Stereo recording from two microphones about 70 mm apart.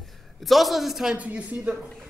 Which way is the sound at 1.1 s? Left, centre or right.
Right.